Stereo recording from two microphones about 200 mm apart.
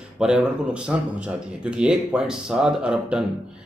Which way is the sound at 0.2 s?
5° right (ahead or behind).